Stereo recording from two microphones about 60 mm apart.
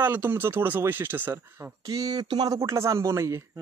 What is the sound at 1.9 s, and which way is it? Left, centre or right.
Speech, right.